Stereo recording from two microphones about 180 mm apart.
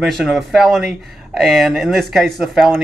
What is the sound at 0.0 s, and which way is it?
Speech, centre (ahead or behind).